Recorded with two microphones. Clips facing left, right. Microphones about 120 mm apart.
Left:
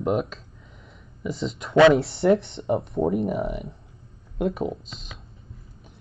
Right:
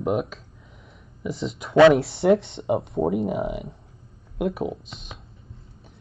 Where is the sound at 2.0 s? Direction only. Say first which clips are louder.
Right 1 dB; 65° right (ahead or behind).